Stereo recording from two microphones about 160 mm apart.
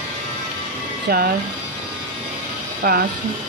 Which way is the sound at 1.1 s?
65° right (ahead or behind).